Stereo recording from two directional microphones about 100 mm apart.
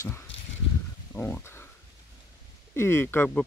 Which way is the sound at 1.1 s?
20° left (ahead or behind).